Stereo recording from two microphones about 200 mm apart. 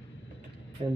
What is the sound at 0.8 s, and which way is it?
Speech, 25° right (ahead or behind).